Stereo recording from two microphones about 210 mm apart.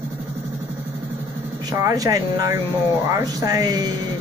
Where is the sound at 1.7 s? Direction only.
15° right (ahead or behind).